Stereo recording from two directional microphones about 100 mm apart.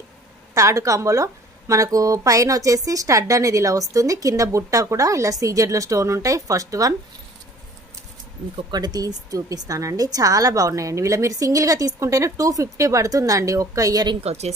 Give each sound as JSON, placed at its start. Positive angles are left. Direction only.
{"t": 0.6, "sound": "speech", "side_deg": -30}
{"t": 8.7, "sound": "speech", "side_deg": -40}
{"t": 14.2, "sound": "speech", "side_deg": -90}